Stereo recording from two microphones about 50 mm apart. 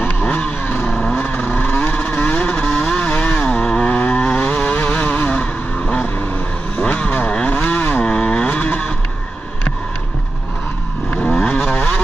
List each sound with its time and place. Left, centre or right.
0.0 s vehicle: left
0.8 s vehicle: centre
1.1 s vehicle: left
7.2 s chainsaw: left
8.1 s chainsaw: centre
8.5 s vehicle: left
11.1 s vehicle: left